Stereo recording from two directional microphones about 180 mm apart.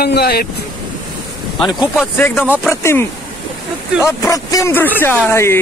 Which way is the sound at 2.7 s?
15° left (ahead or behind).